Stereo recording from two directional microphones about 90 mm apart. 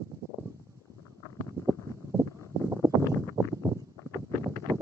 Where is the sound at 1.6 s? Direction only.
35° right (ahead or behind).